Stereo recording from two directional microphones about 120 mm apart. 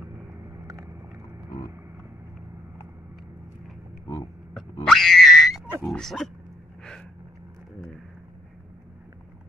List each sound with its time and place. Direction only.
0.4 s vehicle: 25° right (ahead or behind)
4.6 s grunt: 5° left (ahead or behind)
5.9 s speech: centre (ahead or behind)
6.8 s gasp: 5° left (ahead or behind)